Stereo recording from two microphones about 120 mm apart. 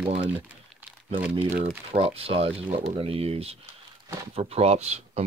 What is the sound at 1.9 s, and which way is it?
Speech, 50° right (ahead or behind).